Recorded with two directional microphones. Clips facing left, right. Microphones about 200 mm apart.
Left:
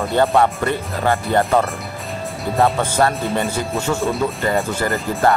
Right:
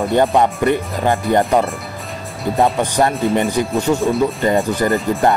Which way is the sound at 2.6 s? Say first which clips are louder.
Right 1 dB; 15° right (ahead or behind).